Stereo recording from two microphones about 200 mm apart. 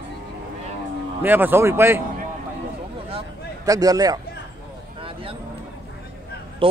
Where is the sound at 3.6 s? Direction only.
15° right (ahead or behind).